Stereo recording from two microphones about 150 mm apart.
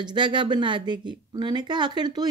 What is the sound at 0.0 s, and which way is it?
Speech, 30° right (ahead or behind).